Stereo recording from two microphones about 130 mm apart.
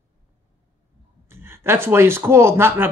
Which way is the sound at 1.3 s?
20° right (ahead or behind).